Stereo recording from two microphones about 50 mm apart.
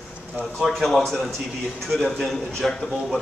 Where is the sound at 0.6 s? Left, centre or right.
Centre.